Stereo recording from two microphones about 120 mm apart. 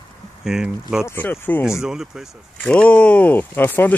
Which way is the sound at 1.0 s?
20° left (ahead or behind).